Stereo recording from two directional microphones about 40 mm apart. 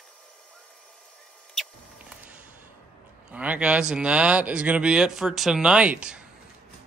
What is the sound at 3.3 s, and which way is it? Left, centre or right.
Speech, right.